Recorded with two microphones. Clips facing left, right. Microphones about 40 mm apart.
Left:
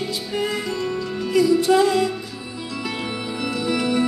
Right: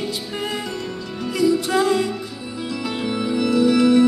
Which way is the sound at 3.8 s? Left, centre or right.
Centre.